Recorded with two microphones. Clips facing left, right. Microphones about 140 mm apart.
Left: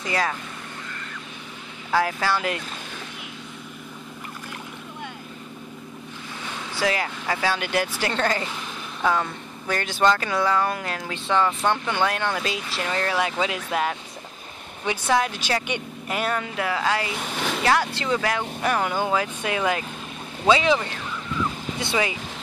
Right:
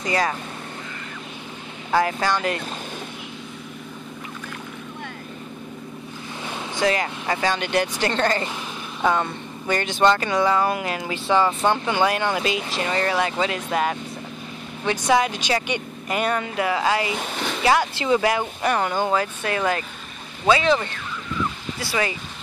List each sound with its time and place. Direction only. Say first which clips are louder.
0.0 s speech: right 3 dB; centre (ahead or behind)
1.9 s speech: right 2 dB; centre (ahead or behind)
6.8 s speech: right 3 dB; 5° left (ahead or behind)
15.1 s speech: right 2 dB; centre (ahead or behind); by 18.4 s 15° right (ahead or behind)
18.6 s speech: even; centre (ahead or behind); by 22.0 s 20° left (ahead or behind)